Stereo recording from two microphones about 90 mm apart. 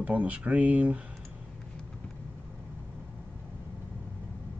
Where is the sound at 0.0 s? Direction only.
15° right (ahead or behind).